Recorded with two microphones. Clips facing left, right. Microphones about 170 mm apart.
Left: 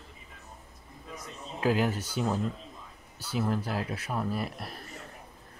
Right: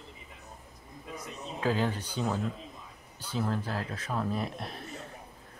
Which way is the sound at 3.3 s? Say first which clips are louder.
Left 2 dB; 10° left (ahead or behind).